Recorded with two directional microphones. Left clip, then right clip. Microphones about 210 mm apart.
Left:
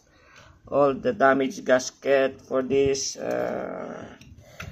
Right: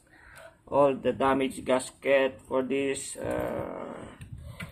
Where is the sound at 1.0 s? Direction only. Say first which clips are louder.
Left 5 dB; 10° left (ahead or behind).